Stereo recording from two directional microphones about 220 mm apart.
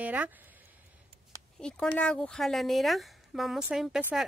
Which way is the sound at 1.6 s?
5° left (ahead or behind).